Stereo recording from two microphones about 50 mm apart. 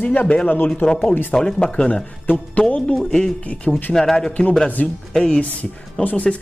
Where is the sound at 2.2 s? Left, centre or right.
Left.